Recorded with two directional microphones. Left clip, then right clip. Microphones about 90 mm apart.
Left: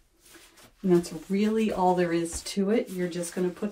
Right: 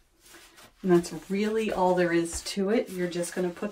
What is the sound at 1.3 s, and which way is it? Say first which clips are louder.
Speech: left 1 dB; 40° right (ahead or behind).